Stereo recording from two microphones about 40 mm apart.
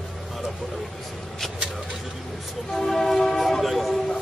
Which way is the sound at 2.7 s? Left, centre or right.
Centre.